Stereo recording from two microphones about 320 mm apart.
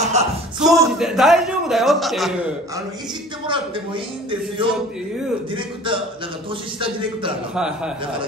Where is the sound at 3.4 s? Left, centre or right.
Centre.